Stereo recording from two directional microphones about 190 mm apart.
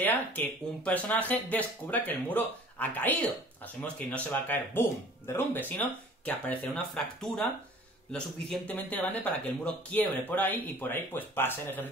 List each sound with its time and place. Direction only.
0.0 s speech: 10° left (ahead or behind)